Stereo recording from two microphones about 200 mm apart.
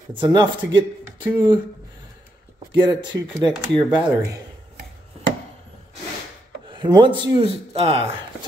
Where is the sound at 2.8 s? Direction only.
20° right (ahead or behind).